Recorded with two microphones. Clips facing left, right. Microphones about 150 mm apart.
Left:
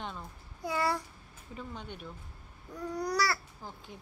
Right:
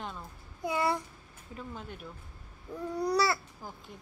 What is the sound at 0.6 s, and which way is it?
Babbling, 20° right (ahead or behind).